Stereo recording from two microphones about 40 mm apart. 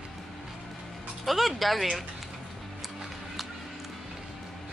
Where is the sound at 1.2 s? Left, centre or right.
Centre.